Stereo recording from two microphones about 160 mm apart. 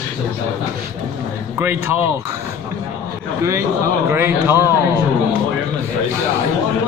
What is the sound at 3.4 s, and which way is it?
A man's voice, 20° right (ahead or behind).